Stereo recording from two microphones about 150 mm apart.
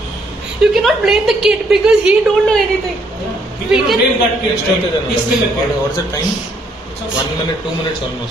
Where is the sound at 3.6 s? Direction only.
5° right (ahead or behind).